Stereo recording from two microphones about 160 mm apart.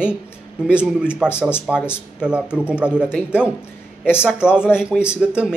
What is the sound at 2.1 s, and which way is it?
Speech, 5° right (ahead or behind).